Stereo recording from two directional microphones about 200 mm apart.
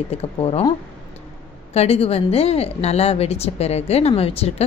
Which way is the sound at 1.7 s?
30° left (ahead or behind).